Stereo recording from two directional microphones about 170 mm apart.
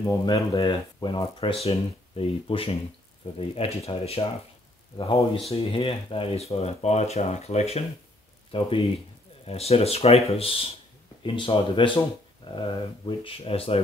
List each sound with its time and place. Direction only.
0.0 s speech: 25° left (ahead or behind)